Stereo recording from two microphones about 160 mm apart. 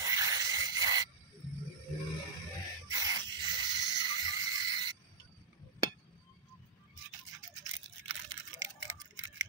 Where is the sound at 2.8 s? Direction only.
25° right (ahead or behind).